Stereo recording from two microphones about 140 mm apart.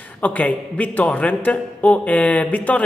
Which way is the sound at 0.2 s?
10° left (ahead or behind).